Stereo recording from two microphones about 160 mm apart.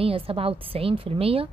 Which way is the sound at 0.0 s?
35° right (ahead or behind).